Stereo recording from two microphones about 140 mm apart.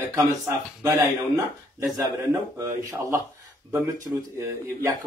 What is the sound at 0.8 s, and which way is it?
A man's voice, 20° right (ahead or behind).